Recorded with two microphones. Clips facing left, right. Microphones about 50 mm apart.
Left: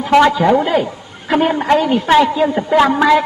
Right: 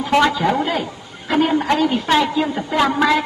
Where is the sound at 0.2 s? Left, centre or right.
Centre.